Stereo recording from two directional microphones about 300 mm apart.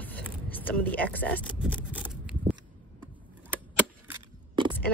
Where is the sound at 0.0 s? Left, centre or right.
Centre.